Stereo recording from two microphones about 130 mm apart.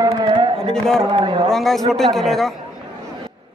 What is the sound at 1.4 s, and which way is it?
A man's voice, centre (ahead or behind).